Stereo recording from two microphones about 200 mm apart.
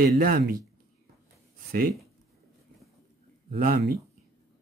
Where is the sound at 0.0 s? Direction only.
45° right (ahead or behind).